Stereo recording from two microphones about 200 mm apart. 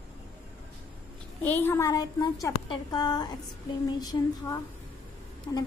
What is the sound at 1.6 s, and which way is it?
A woman's voice, 15° left (ahead or behind).